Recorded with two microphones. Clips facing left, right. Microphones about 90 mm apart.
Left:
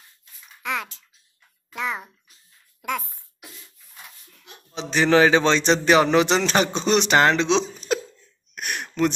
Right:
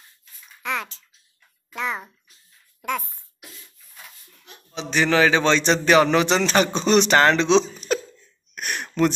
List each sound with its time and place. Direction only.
0.6 s a child's voice: 5° left (ahead or behind)
4.7 s a man's voice: 25° left (ahead or behind)
7.9 s a sound: 15° left (ahead or behind)
8.5 s gasp: 5° left (ahead or behind)